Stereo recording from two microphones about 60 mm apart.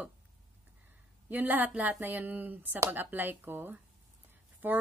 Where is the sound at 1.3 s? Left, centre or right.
Right.